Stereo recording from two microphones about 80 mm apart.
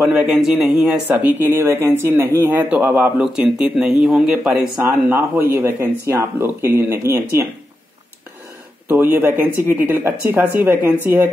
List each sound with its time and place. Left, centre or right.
0.0 s speech: centre
1.1 s speech: right
3.2 s speech: centre
4.8 s speech: right
8.8 s speech: right